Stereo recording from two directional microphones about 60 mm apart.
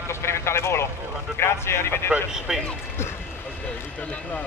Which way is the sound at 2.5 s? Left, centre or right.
Centre.